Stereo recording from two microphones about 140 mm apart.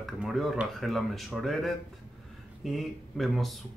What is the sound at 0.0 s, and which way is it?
Speech, centre (ahead or behind).